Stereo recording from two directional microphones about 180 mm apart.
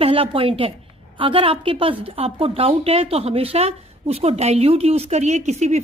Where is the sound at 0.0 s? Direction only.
30° right (ahead or behind).